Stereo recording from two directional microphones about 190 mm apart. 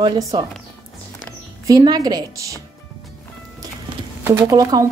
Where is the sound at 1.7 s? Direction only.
20° right (ahead or behind).